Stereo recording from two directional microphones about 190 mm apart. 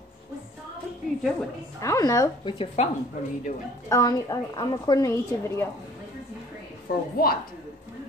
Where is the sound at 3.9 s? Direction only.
20° left (ahead or behind).